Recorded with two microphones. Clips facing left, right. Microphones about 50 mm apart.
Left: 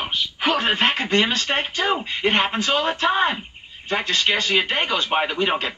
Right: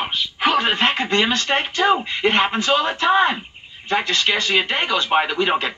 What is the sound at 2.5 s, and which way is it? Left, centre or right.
Speech, right.